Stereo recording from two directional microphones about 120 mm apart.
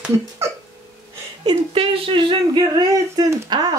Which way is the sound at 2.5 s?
35° right (ahead or behind).